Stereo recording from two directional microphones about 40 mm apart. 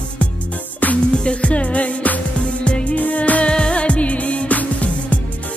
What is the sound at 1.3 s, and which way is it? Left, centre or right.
Music, left.